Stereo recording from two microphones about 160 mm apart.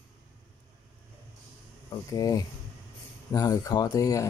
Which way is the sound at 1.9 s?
20° left (ahead or behind).